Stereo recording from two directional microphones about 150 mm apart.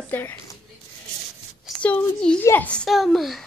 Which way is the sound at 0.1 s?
15° left (ahead or behind).